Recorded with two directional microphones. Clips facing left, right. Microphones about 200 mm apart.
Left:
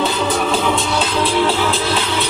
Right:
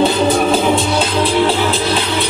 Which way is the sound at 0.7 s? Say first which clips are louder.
Right 3 dB; 35° right (ahead or behind).